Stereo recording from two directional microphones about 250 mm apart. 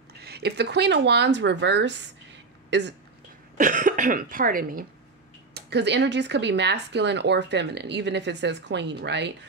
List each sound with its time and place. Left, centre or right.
0.2 s speech: right
3.5 s speech: right